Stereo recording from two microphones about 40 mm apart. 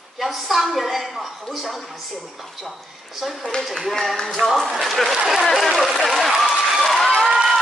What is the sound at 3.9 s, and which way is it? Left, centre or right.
Speech, centre.